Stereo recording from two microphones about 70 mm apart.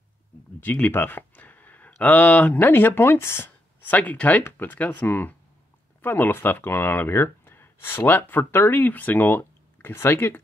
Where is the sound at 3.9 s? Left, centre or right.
Left.